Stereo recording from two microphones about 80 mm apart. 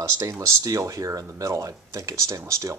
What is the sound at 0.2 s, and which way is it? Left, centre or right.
Speech, right.